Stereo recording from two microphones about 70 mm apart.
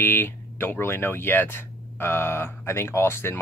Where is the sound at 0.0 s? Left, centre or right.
Left.